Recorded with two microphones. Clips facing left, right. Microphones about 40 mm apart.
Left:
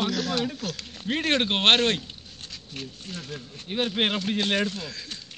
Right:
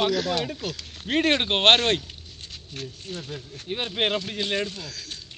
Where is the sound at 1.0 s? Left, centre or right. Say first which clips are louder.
Right 4 dB; right.